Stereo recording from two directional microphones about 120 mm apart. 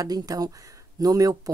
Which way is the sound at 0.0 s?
30° right (ahead or behind).